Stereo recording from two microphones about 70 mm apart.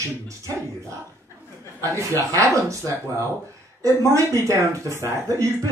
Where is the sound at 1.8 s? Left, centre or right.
Right.